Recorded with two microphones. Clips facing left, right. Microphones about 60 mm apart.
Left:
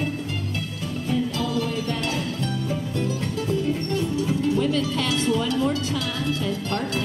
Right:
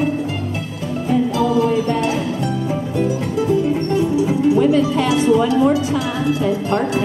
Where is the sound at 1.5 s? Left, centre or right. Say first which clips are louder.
Right 10 dB; centre.